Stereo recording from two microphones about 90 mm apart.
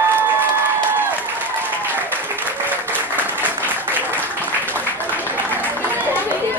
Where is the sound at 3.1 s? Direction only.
20° right (ahead or behind).